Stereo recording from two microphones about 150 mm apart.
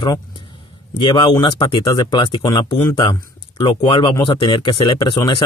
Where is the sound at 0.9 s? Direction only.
30° left (ahead or behind).